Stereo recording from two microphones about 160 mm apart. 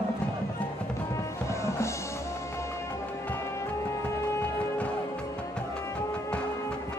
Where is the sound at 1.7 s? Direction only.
20° left (ahead or behind).